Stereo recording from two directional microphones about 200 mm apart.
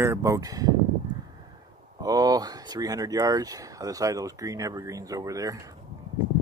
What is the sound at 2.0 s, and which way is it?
Speech, 20° right (ahead or behind).